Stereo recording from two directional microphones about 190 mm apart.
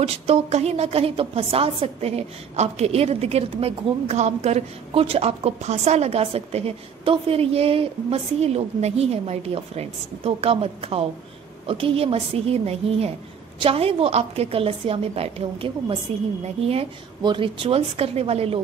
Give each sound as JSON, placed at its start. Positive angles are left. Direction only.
{"t": 0.0, "sound": "a woman's voice", "side_deg": -35}